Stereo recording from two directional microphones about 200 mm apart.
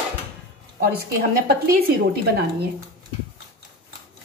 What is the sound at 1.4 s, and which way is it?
A woman's voice, 50° right (ahead or behind).